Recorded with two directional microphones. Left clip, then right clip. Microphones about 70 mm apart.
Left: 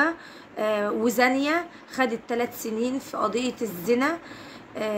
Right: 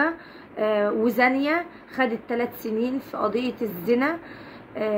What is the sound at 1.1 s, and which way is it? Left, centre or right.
A woman's voice, left.